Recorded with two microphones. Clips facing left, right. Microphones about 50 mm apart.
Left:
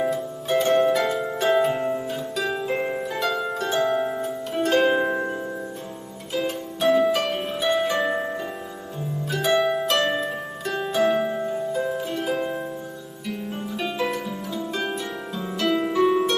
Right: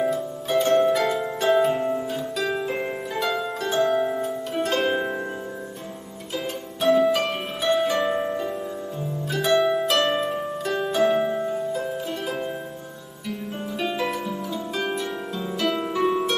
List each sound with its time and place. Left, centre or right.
0.0 s music: centre
0.6 s harp: left
0.8 s harp: centre
6.3 s harp: centre
9.3 s harp: centre
11.3 s music: centre
11.7 s music: centre
13.7 s music: centre
14.9 s harp: centre